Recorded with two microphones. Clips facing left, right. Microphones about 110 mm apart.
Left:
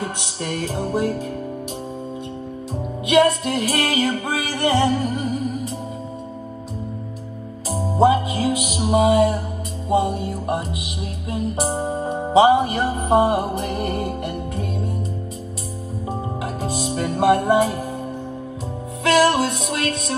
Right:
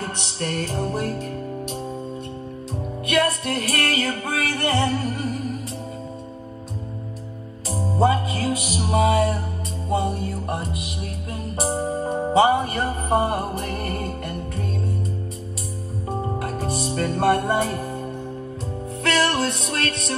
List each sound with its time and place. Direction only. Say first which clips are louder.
0.0 s music: left 1 dB; 5° left (ahead or behind)
3.1 s music: left 6 dB; centre (ahead or behind)
8.0 s music: left 4 dB; 5° left (ahead or behind)
11.6 s music: right 3 dB; 25° left (ahead or behind)
12.4 s music: left 4 dB; 5° left (ahead or behind)
12.9 s music: left 5 dB; 15° left (ahead or behind)
16.1 s music: right 1 dB; 5° left (ahead or behind)
19.0 s music: left 5 dB; 5° left (ahead or behind)